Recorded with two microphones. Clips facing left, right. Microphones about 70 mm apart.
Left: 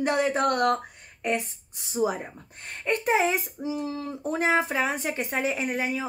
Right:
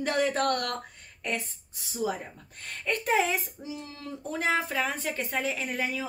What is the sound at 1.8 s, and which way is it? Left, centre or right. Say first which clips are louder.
A woman's voice: left 5 dB; left.